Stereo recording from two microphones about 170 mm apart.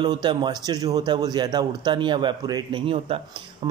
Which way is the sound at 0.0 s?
25° right (ahead or behind).